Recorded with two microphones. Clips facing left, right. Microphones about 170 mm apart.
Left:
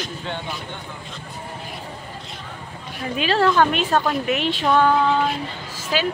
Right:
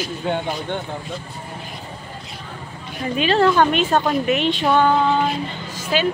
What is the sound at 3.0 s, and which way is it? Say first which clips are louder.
A woman's voice: right 3 dB; centre (ahead or behind).